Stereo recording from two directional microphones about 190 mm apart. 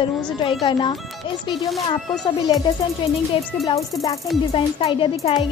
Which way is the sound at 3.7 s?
20° left (ahead or behind).